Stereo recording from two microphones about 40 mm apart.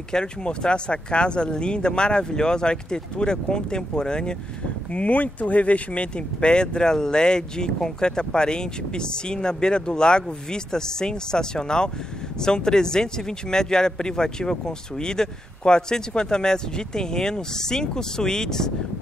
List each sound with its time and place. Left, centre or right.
0.1 s speech: left
4.9 s speech: left; by 18.7 s centre